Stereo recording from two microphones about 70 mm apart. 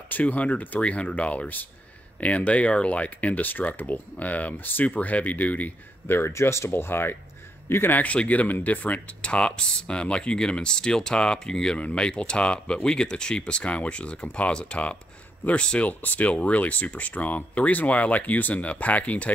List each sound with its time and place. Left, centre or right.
0.1 s speech: left